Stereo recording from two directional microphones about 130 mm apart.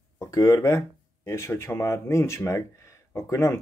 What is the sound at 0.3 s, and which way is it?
Speech, 25° left (ahead or behind).